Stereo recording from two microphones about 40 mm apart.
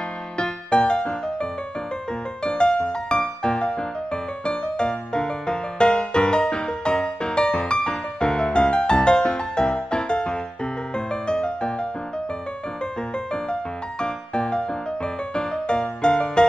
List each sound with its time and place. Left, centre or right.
0.4 s music: left
14.0 s music: left